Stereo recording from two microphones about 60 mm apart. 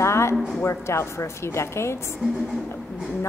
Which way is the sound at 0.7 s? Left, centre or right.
Left.